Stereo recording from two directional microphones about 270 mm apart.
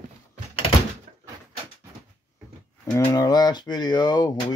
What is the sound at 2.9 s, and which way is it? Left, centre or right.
Speech, centre.